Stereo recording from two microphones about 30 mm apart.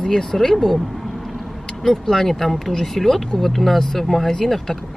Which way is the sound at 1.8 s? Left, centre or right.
Centre.